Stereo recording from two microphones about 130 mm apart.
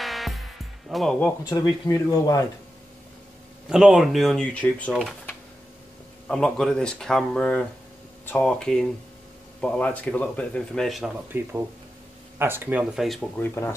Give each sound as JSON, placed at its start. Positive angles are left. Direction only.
{"t": 0.0, "sound": "music", "side_deg": 0}
{"t": 1.4, "sound": "speech", "side_deg": 25}
{"t": 3.6, "sound": "speech", "side_deg": -5}
{"t": 6.2, "sound": "a man's voice", "side_deg": 5}
{"t": 11.3, "sound": "speech", "side_deg": -15}
{"t": 12.9, "sound": "speech", "side_deg": 0}
{"t": 13.4, "sound": "speech", "side_deg": 20}